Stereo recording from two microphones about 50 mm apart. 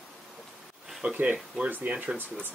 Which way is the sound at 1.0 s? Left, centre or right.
Right.